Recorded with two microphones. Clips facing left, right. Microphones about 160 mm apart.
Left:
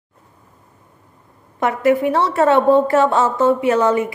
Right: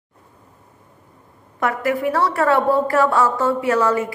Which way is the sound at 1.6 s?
20° left (ahead or behind).